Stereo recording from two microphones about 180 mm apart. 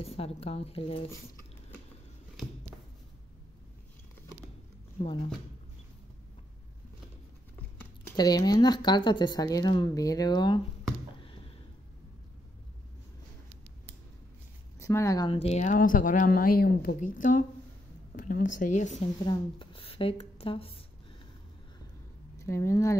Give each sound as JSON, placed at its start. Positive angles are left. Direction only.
{"t": 0.0, "sound": "speech", "side_deg": 35}
{"t": 8.2, "sound": "speech", "side_deg": 20}
{"t": 11.2, "sound": "a sound", "side_deg": 30}
{"t": 14.8, "sound": "speech", "side_deg": 15}
{"t": 15.2, "sound": "speech", "side_deg": 35}
{"t": 19.2, "sound": "speech", "side_deg": 25}
{"t": 22.4, "sound": "speech", "side_deg": 15}